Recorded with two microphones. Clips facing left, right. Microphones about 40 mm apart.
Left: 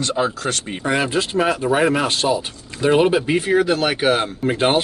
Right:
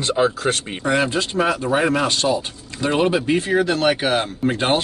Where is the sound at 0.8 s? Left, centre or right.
Centre.